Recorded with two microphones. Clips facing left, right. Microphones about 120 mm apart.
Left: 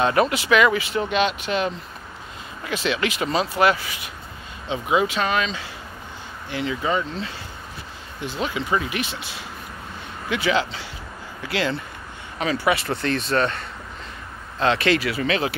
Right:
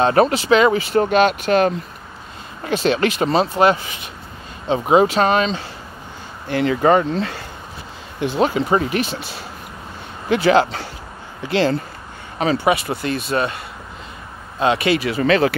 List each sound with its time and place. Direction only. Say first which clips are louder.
0.0 s speech: right 5 dB; 35° right (ahead or behind)
0.9 s speech: right 7 dB; 45° right (ahead or behind)
3.5 s speech: right 4 dB; 25° right (ahead or behind)
4.6 s speech: right 7 dB; 40° right (ahead or behind)
6.5 s speech: right 9 dB; 55° right (ahead or behind)
8.4 s speech: right 7 dB; 40° right (ahead or behind)
10.3 s speech: right 8 dB; 50° right (ahead or behind)
11.4 s speech: right 7 dB; 30° right (ahead or behind)
12.6 s speech: right 3 dB; 15° right (ahead or behind)
14.6 s speech: right 3 dB; 15° right (ahead or behind)
15.2 s speech: right 11 dB; 50° right (ahead or behind)